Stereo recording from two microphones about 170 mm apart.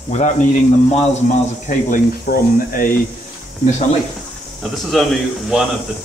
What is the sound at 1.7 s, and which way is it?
Speech, 50° left (ahead or behind).